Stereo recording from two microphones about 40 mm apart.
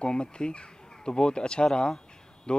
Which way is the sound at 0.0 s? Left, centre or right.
Left.